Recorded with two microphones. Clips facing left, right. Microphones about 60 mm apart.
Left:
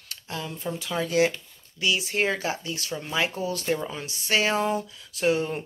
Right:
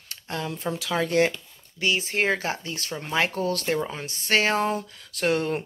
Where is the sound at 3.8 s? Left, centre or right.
Right.